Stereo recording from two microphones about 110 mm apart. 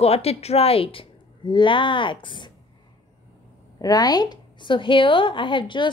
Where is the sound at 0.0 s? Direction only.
65° left (ahead or behind); by 2.5 s 45° left (ahead or behind).